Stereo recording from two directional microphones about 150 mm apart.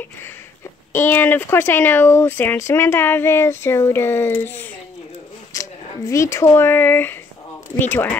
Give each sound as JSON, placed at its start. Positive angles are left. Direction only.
{"t": 0.9, "sound": "speech", "side_deg": 15}